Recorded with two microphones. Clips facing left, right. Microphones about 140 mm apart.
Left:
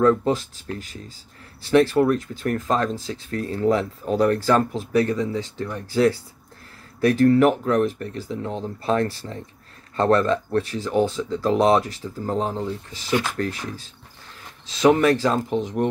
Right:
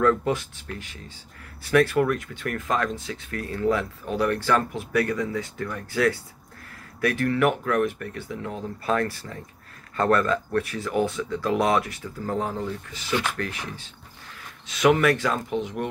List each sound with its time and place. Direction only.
0.0 s speech: 20° left (ahead or behind)
0.3 s speech: 35° left (ahead or behind)